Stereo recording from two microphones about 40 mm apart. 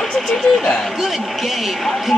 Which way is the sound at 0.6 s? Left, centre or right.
Centre.